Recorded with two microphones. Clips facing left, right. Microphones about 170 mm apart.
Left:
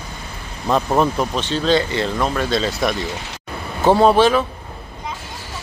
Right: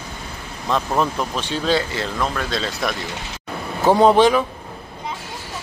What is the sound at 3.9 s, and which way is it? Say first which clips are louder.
Speech: even; 20° right (ahead or behind).